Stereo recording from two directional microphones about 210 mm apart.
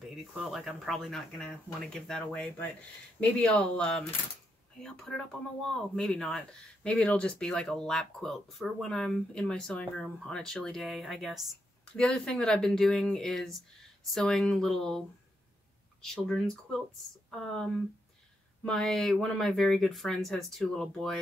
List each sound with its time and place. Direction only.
0.1 s speech: centre (ahead or behind)